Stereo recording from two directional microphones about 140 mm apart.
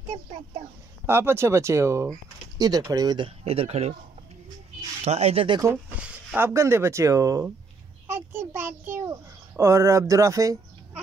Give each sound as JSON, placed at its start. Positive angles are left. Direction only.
{"t": 0.1, "sound": "a sound", "side_deg": -55}
{"t": 1.0, "sound": "speech", "side_deg": -15}
{"t": 3.4, "sound": "speech", "side_deg": -45}
{"t": 5.0, "sound": "speech", "side_deg": -50}
{"t": 5.9, "sound": "speech", "side_deg": -10}
{"t": 8.1, "sound": "a sound", "side_deg": -15}
{"t": 9.6, "sound": "speech", "side_deg": -20}